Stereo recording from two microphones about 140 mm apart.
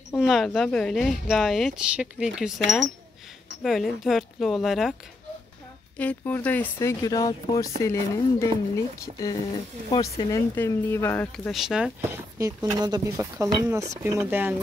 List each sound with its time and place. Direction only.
0.3 s speech: centre (ahead or behind)
5.9 s speech: 10° left (ahead or behind); by 10.1 s 25° left (ahead or behind)
10.3 s speech: 15° left (ahead or behind)
11.3 s speech: centre (ahead or behind)
12.0 s speech: 20° right (ahead or behind)